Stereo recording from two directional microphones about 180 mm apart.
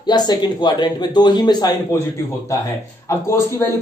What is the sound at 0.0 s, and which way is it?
A man's voice, 25° left (ahead or behind).